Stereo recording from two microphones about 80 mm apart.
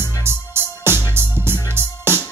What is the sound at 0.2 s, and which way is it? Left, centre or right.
Music, right.